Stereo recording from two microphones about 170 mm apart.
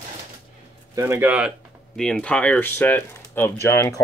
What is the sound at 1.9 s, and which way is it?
Speech, 5° left (ahead or behind).